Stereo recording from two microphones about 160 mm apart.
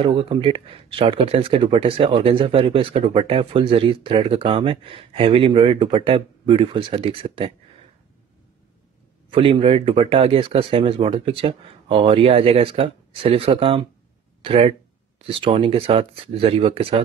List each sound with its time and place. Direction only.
0.0 s speech: 30° right (ahead or behind)
9.3 s speech: 35° right (ahead or behind)